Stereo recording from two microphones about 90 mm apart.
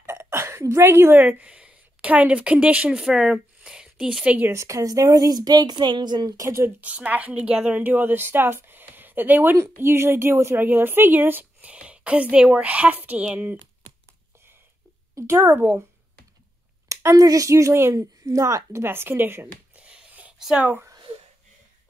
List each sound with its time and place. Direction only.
0.0 s speech: 30° right (ahead or behind); by 4.5 s 10° right (ahead or behind)
4.5 s speech: 35° right (ahead or behind); by 6.3 s 55° right (ahead or behind)
6.3 s speech: 35° right (ahead or behind)
6.8 s a woman's voice: 15° right (ahead or behind)
15.1 s a woman's voice: 30° right (ahead or behind)
16.9 s speech: 35° right (ahead or behind)
19.8 s a sound: 15° right (ahead or behind)